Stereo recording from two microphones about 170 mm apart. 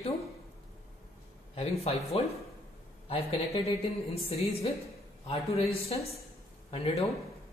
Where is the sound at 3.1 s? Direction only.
35° left (ahead or behind).